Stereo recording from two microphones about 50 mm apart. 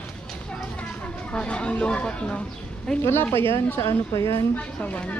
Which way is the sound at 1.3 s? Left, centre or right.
Left.